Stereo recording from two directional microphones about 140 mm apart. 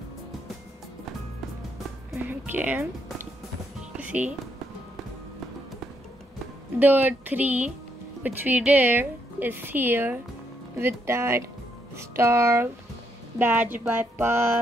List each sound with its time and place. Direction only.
2.1 s a woman's voice: 10° right (ahead or behind)
4.0 s music: 10° right (ahead or behind)
6.8 s a woman's voice: 15° right (ahead or behind)